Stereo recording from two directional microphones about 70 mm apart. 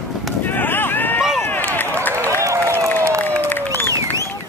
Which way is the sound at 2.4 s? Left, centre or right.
Right.